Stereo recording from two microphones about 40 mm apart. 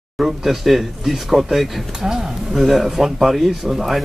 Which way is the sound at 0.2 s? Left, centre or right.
Centre.